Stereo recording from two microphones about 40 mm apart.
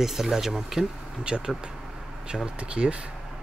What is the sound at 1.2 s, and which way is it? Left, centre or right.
Speech, right.